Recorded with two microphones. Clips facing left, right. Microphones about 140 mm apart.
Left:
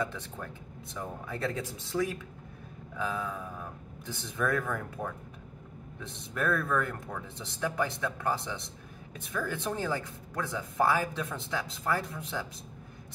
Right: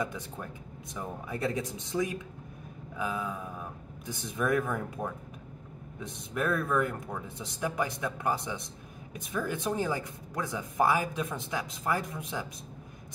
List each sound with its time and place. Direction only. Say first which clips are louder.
0.0 s speech: even; 15° right (ahead or behind)